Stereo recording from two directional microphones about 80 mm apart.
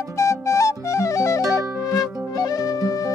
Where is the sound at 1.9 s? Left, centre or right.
Left.